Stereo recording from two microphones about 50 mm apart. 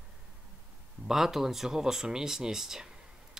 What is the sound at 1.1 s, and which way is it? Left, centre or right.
Speech, centre.